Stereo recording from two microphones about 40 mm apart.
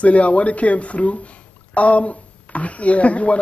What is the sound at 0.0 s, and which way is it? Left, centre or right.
Speech, left.